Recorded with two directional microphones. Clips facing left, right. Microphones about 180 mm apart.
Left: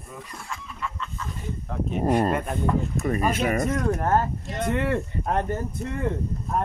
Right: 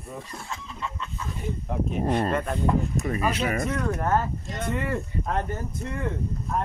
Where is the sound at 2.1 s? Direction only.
10° left (ahead or behind).